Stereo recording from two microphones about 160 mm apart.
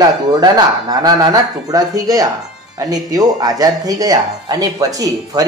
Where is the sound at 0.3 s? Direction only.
25° right (ahead or behind).